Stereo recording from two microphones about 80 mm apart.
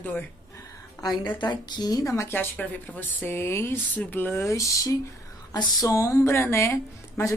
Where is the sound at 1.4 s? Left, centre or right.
Left.